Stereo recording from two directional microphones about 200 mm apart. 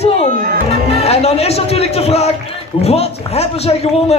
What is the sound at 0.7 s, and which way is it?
A man's voice, 30° left (ahead or behind).